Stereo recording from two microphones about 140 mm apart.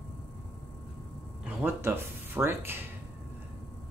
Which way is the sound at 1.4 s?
15° right (ahead or behind).